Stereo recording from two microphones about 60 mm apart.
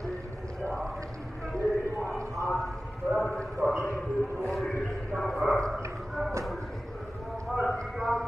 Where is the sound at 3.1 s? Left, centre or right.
Centre.